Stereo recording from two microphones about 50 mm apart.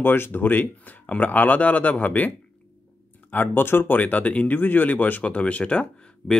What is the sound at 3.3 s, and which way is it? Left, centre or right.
Speech, left.